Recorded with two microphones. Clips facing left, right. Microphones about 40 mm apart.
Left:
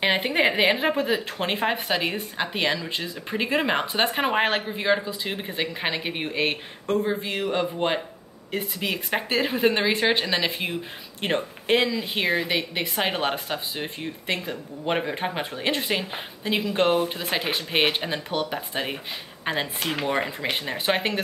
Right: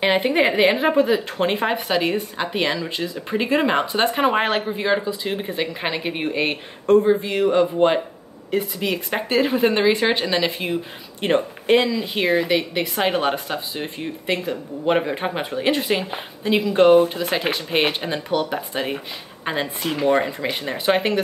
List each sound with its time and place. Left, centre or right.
0.0 s speech: centre
17.2 s speech: centre
17.7 s speech: centre